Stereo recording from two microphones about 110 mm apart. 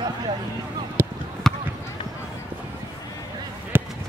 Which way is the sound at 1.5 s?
5° left (ahead or behind).